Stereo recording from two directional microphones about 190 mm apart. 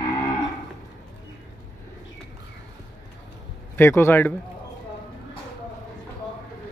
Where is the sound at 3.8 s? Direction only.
10° left (ahead or behind).